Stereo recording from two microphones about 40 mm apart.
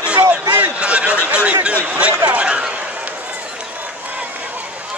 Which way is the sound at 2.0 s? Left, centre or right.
Right.